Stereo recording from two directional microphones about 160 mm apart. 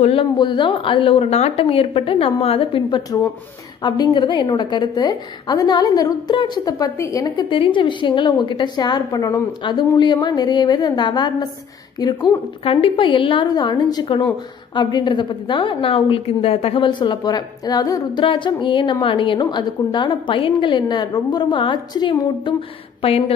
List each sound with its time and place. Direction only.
0.0 s a woman's voice: 35° left (ahead or behind)